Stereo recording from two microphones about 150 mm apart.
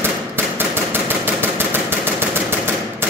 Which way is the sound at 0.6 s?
15° right (ahead or behind).